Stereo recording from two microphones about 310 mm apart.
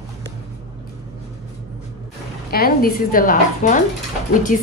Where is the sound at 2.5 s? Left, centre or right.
Left.